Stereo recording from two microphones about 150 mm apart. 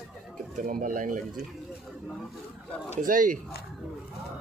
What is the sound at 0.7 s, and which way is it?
Speech, 65° right (ahead or behind).